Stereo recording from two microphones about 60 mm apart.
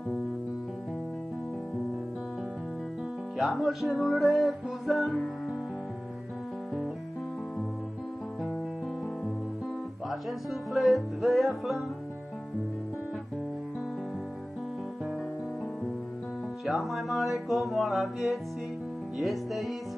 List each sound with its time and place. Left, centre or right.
3.3 s music: centre
10.7 s music: centre
16.6 s music: centre